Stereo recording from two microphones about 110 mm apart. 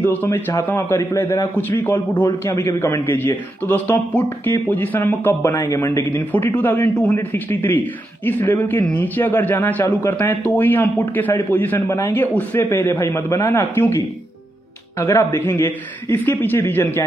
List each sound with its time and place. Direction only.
0.0 s a man's voice: 15° left (ahead or behind)
2.4 s a man's voice: 25° left (ahead or behind)